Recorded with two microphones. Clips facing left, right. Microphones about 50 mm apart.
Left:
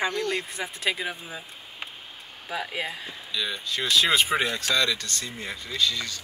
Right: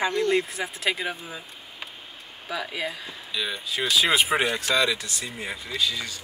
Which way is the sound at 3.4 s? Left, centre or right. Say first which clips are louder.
Right 1 dB; centre.